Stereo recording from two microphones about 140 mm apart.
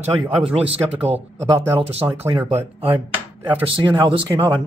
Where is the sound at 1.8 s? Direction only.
45° right (ahead or behind).